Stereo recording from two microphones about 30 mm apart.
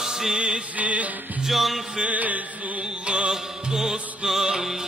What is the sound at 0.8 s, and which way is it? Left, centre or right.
Music, right.